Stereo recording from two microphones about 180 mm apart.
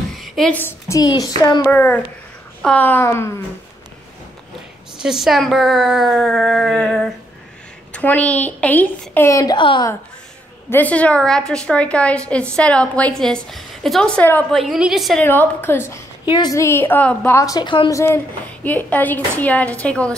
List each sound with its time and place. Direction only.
0.1 s a child's voice: centre (ahead or behind); by 1.6 s 20° left (ahead or behind)
1.6 s a woman's voice: 10° left (ahead or behind)
5.0 s a woman's voice: centre (ahead or behind); by 9.8 s 25° left (ahead or behind)
10.7 s a woman's voice: 10° left (ahead or behind)
14.6 s speech: centre (ahead or behind)
15.2 s a woman's voice: 10° left (ahead or behind)